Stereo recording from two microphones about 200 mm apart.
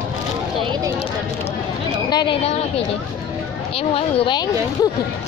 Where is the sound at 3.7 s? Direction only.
30° left (ahead or behind).